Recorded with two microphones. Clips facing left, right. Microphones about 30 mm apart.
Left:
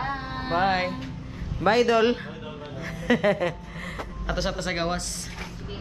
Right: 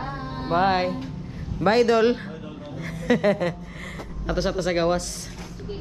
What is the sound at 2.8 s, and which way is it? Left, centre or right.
Speech, left.